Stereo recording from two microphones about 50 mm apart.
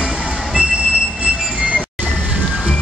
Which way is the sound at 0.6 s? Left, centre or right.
Right.